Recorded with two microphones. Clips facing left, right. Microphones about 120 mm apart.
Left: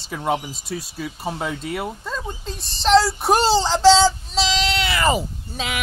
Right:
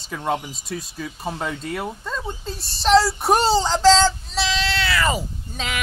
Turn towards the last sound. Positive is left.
turn(degrees=5)  # may be behind; listen again after turning